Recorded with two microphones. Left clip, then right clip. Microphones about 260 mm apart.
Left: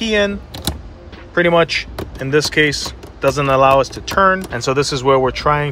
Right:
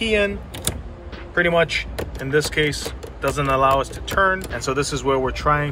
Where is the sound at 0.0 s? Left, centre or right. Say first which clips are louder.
Left 3 dB; left.